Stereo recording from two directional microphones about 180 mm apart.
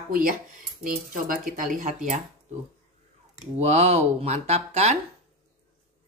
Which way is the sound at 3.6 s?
40° right (ahead or behind).